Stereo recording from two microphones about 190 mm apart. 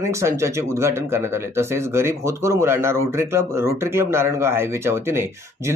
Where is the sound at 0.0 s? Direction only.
15° right (ahead or behind).